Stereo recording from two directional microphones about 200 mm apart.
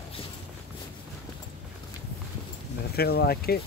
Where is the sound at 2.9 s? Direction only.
50° left (ahead or behind).